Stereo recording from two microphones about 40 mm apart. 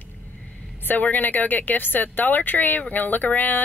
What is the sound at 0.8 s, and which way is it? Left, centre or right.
Speech, left.